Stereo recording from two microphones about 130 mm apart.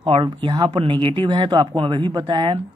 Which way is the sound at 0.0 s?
40° right (ahead or behind).